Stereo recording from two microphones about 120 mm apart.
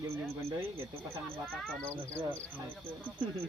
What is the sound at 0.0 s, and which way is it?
Speech, 20° right (ahead or behind).